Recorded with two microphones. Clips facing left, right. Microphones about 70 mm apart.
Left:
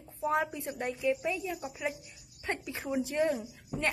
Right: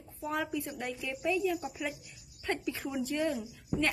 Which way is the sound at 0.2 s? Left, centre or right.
Left.